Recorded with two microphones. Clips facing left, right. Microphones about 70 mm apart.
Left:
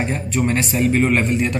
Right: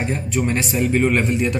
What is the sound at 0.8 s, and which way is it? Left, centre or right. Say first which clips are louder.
Speech: left 1 dB; left.